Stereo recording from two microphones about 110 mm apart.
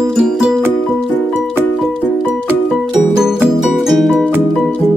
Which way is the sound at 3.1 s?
5° right (ahead or behind).